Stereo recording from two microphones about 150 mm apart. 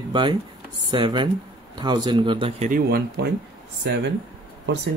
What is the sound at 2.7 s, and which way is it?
Speech, 90° right.